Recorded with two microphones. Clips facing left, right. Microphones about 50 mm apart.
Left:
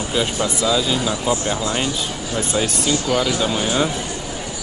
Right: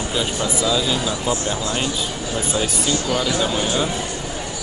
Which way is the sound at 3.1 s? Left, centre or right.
Left.